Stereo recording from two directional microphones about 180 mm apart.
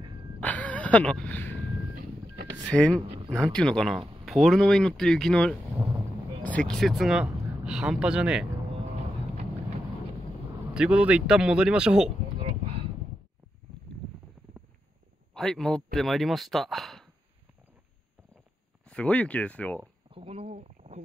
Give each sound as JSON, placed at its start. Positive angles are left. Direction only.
{"t": 0.4, "sound": "vehicle", "side_deg": 10}
{"t": 2.6, "sound": "speech", "side_deg": 5}
{"t": 10.7, "sound": "speech", "side_deg": -5}
{"t": 12.4, "sound": "a sound", "side_deg": -30}
{"t": 15.3, "sound": "speech", "side_deg": 5}
{"t": 18.9, "sound": "speech", "side_deg": 5}
{"t": 20.1, "sound": "speech", "side_deg": -30}